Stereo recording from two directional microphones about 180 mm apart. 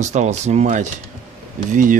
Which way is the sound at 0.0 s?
40° right (ahead or behind).